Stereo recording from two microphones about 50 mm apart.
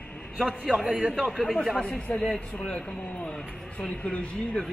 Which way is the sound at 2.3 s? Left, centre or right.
Left.